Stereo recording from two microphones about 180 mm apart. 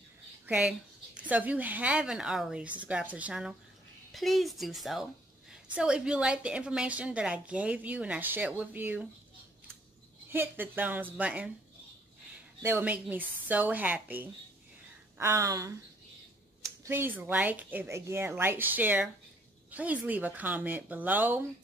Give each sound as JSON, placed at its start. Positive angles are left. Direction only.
{"t": 0.5, "sound": "a woman's voice", "side_deg": -5}
{"t": 10.3, "sound": "a woman's voice", "side_deg": -10}
{"t": 12.6, "sound": "a woman's voice", "side_deg": -10}
{"t": 16.8, "sound": "a woman's voice", "side_deg": -10}